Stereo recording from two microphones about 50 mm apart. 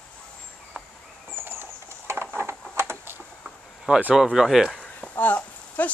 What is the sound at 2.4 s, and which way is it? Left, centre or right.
Typing, right.